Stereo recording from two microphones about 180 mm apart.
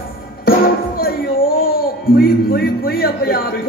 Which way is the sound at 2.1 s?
55° left (ahead or behind).